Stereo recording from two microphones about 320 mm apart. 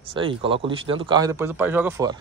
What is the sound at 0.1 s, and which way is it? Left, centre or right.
Speech, centre.